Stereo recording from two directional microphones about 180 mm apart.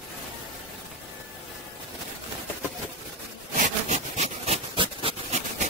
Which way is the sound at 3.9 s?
40° right (ahead or behind).